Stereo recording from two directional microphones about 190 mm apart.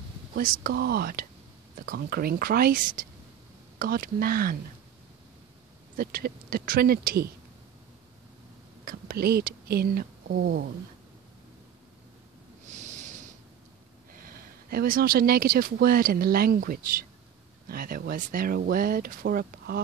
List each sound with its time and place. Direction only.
0.4 s speech: 50° right (ahead or behind)
5.9 s speech: 50° right (ahead or behind)
8.8 s a woman's voice: 50° right (ahead or behind)
12.6 s snort: 40° right (ahead or behind)
14.1 s speech: 50° right (ahead or behind)